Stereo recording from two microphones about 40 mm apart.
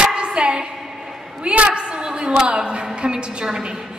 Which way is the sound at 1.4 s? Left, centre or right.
Right.